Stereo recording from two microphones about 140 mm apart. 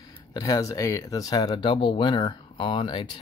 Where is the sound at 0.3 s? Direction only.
30° left (ahead or behind).